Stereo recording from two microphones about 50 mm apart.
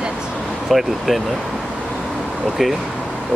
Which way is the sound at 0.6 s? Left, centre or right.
Centre.